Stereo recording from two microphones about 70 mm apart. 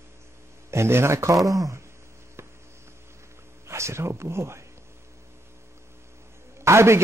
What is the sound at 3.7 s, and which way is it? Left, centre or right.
Speech, right.